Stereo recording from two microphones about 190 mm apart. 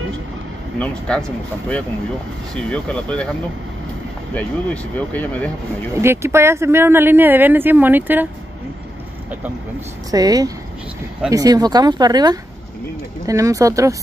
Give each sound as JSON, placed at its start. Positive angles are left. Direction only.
{"t": 0.7, "sound": "speech", "side_deg": 5}
{"t": 2.5, "sound": "speech", "side_deg": 5}
{"t": 4.9, "sound": "speech", "side_deg": 10}
{"t": 5.9, "sound": "speech", "side_deg": -15}
{"t": 10.1, "sound": "speech", "side_deg": -20}